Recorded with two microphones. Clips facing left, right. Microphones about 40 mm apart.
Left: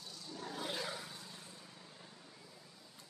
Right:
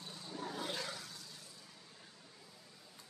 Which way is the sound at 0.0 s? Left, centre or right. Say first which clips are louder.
Right 2 dB; right.